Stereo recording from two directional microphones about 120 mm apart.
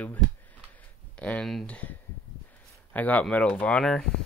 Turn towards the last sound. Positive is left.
turn(degrees=5)  # may be behind; listen again after turning